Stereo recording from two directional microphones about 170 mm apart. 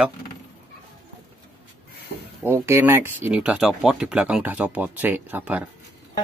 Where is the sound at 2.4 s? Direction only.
15° right (ahead or behind).